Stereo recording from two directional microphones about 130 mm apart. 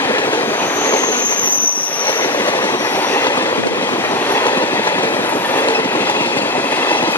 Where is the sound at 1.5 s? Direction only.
15° left (ahead or behind).